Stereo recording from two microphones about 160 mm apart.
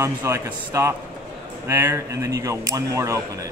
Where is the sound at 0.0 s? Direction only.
15° right (ahead or behind).